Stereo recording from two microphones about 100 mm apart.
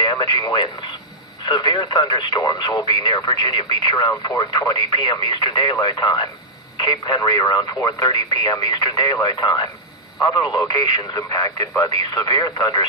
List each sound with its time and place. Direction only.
0.2 s speech: 45° left (ahead or behind)
10.8 s speech: 40° left (ahead or behind)